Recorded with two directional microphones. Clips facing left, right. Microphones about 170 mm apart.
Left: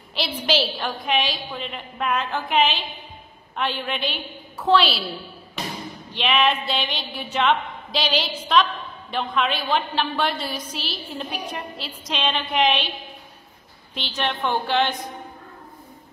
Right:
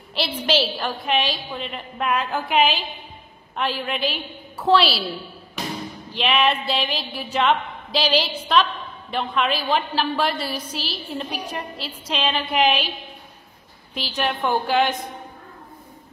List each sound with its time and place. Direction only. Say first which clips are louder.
0.1 s a woman's voice: right 1 dB; 5° right (ahead or behind)
6.1 s a woman's voice: right 1 dB; 5° right (ahead or behind)
13.9 s a woman's voice: right 2 dB; 5° right (ahead or behind)